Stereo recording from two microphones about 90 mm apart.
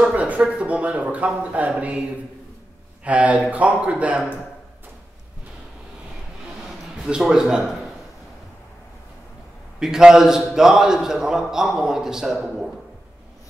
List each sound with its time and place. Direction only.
0.0 s speech: 15° right (ahead or behind)
7.0 s speech: 5° right (ahead or behind)
9.8 s a man's voice: 5° right (ahead or behind)